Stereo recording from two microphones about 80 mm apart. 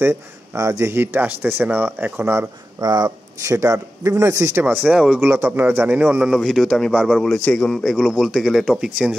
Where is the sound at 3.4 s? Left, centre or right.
Right.